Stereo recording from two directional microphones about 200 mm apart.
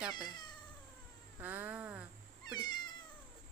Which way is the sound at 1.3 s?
10° right (ahead or behind).